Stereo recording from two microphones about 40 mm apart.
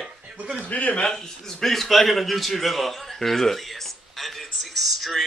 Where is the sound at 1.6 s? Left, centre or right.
Centre.